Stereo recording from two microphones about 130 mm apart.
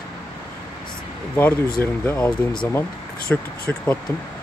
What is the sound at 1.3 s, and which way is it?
Speech, 15° left (ahead or behind).